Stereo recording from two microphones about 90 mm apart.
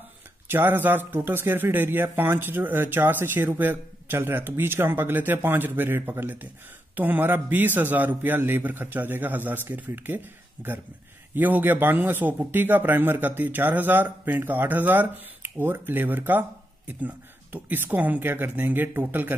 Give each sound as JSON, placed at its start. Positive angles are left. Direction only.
{"t": 0.5, "sound": "speech", "side_deg": -20}